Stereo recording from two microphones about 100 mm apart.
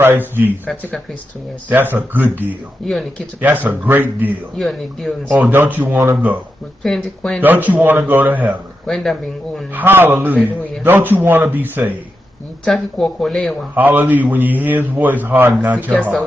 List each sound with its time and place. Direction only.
0.0 s a man's voice: 20° right (ahead or behind)
1.7 s a man's voice: 20° right (ahead or behind)
3.3 s a man's voice: 15° right (ahead or behind)
4.6 s speech: 5° left (ahead or behind)
5.4 s a man's voice: 20° right (ahead or behind)
6.8 s speech: 5° left (ahead or behind)
7.4 s a man's voice: 15° right (ahead or behind)
8.8 s speech: 5° left (ahead or behind)
9.8 s a man's voice: 20° right (ahead or behind)
12.6 s speech: 5° left (ahead or behind)
13.7 s a man's voice: 20° right (ahead or behind)